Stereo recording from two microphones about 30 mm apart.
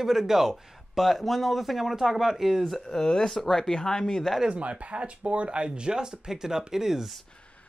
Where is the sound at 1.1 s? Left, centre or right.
Centre.